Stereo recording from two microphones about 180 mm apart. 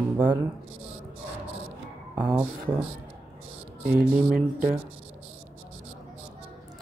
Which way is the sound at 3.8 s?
10° right (ahead or behind).